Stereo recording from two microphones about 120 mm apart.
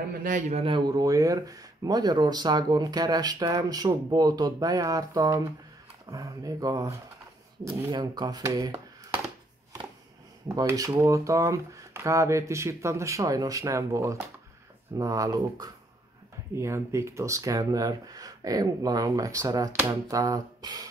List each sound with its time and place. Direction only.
0.3 s a man's voice: 65° right (ahead or behind)
0.7 s speech: 40° right (ahead or behind)
10.7 s speech: 25° right (ahead or behind)